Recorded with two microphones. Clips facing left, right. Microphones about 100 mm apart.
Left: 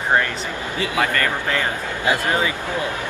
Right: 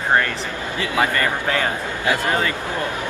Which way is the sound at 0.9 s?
15° right (ahead or behind).